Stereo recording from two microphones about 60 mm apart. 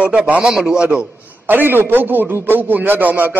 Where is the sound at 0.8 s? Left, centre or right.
Right.